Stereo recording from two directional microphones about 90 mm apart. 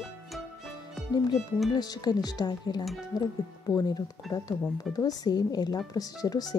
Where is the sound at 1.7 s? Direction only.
50° left (ahead or behind).